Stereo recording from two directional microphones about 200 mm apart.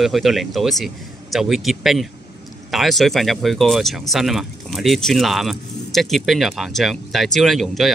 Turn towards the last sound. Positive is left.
turn(degrees=0)  # may be behind; listen again after turning